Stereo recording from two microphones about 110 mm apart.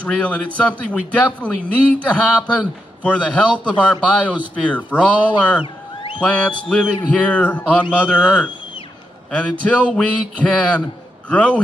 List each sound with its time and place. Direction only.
0.0 s a man's voice: 10° left (ahead or behind)